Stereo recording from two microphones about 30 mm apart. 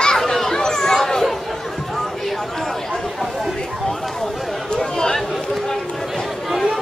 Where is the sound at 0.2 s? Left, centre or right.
Centre.